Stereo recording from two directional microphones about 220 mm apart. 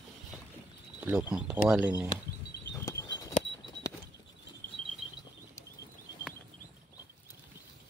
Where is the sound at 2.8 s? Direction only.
15° left (ahead or behind).